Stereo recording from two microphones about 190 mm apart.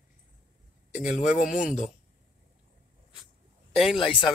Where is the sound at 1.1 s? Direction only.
40° left (ahead or behind).